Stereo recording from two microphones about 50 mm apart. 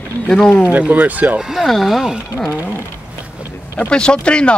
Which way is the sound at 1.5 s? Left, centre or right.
Centre.